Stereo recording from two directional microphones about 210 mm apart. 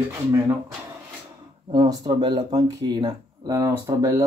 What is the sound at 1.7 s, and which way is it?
Speech, 20° right (ahead or behind).